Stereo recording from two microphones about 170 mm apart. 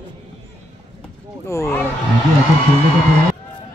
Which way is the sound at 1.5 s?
15° left (ahead or behind).